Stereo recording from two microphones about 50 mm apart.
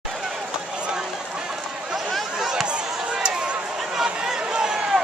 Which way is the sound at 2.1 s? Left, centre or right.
Centre.